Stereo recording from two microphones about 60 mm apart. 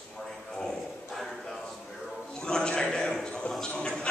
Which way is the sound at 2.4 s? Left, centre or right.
Centre.